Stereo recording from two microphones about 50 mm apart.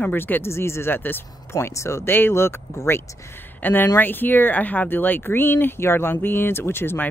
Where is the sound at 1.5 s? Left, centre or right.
Left.